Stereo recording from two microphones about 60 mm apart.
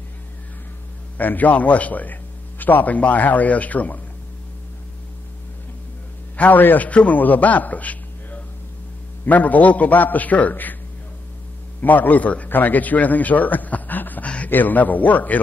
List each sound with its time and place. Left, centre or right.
1.1 s a man's voice: left
6.3 s a man's voice: left
11.8 s a man's voice: left